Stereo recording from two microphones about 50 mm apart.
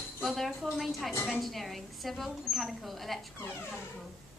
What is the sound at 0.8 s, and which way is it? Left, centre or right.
A woman's voice, centre.